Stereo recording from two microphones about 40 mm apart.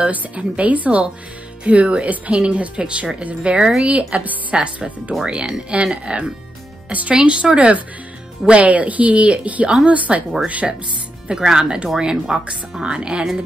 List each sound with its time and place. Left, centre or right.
0.0 s speech: right
5.2 s speech: right
6.9 s speech: right
7.2 s speech: right
11.2 s speech: centre